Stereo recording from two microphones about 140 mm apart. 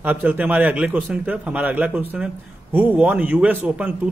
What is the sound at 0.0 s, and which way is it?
A man's voice, 15° right (ahead or behind).